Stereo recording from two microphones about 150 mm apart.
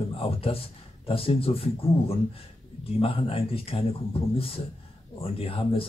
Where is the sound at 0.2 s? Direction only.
40° left (ahead or behind).